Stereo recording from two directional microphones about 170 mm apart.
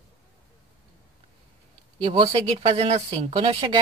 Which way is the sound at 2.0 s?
30° right (ahead or behind).